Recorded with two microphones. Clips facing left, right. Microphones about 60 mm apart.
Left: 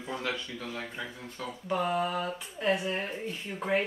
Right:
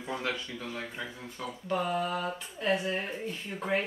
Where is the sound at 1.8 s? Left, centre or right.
Centre.